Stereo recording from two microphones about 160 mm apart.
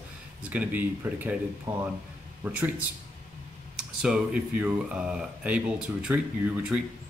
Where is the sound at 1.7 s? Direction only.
25° right (ahead or behind).